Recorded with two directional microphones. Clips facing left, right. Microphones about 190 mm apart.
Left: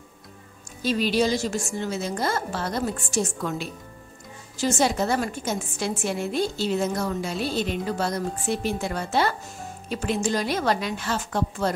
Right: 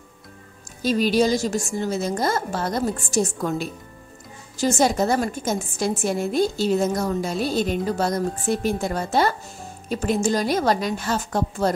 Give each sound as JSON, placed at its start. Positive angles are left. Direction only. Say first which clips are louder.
{"t": 0.8, "sound": "a woman's voice", "louder": "right 3 dB", "side_deg": -45}